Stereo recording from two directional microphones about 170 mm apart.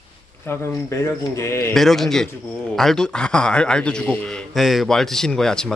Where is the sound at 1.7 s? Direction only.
Centre (ahead or behind).